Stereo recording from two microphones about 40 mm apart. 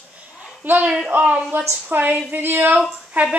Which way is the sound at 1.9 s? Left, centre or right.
Right.